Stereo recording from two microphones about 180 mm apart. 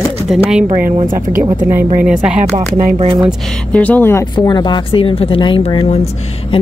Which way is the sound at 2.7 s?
45° right (ahead or behind).